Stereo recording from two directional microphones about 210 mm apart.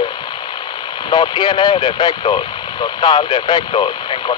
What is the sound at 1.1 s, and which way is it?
Speech, 20° left (ahead or behind).